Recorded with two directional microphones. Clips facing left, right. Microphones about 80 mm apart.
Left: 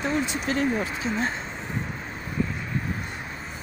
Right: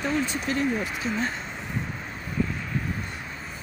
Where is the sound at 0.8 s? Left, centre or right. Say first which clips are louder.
Left 1 dB; left.